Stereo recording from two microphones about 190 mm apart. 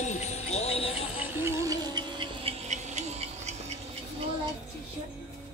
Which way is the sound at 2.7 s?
35° right (ahead or behind).